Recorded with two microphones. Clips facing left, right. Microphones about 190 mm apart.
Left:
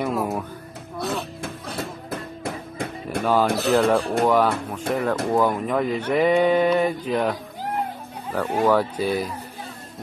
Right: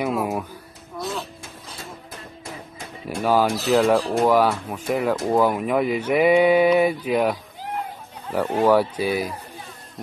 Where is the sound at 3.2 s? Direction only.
5° right (ahead or behind).